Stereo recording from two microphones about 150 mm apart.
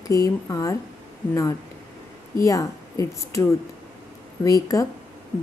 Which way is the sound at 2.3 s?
20° left (ahead or behind).